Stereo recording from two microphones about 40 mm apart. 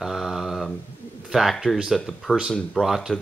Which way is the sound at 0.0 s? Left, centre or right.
Centre.